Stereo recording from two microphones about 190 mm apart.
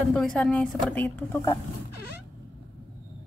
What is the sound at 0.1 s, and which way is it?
A woman's voice, 5° left (ahead or behind).